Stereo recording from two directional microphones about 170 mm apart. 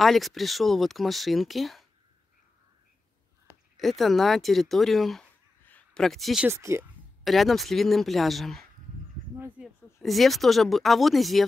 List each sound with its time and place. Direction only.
0.0 s speech: centre (ahead or behind)
3.7 s speech: centre (ahead or behind)
6.5 s speech: 15° right (ahead or behind)
7.2 s speech: centre (ahead or behind)
9.6 s a sound: 5° right (ahead or behind)
9.9 s speech: centre (ahead or behind)